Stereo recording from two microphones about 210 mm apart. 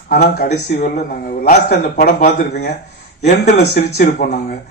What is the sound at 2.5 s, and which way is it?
Speech, 50° left (ahead or behind).